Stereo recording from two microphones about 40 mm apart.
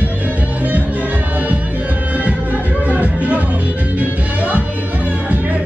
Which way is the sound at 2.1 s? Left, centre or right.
Right.